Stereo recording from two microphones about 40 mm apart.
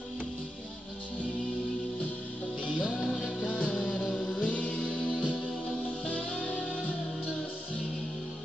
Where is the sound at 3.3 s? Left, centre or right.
Left.